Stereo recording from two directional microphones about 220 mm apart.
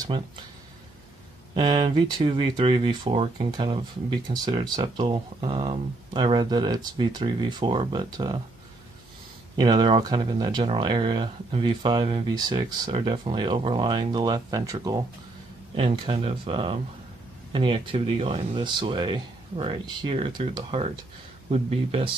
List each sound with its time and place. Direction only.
0.0 s speech: 20° right (ahead or behind)
1.5 s speech: 20° right (ahead or behind)
9.6 s speech: 20° right (ahead or behind)